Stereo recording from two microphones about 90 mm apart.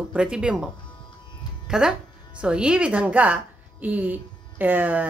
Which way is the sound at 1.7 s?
5° right (ahead or behind).